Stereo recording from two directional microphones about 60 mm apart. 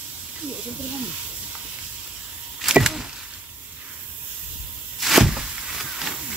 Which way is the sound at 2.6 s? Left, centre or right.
Centre.